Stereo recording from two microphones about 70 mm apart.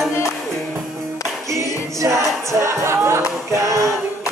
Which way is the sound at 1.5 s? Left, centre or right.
Right.